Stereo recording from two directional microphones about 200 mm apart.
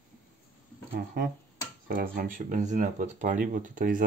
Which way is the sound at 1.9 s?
45° right (ahead or behind).